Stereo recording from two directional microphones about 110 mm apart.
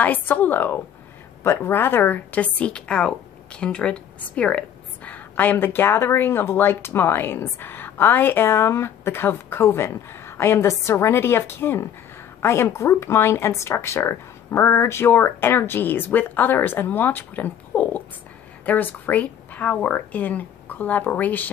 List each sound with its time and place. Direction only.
0.0 s a woman's voice: 15° left (ahead or behind)